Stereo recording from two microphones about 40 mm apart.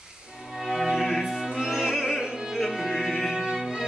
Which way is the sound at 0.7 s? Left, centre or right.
Centre.